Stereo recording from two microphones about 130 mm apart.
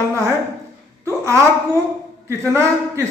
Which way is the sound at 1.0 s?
20° right (ahead or behind).